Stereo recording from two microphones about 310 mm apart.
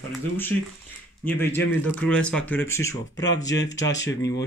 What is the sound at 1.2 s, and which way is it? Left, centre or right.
Speech, centre.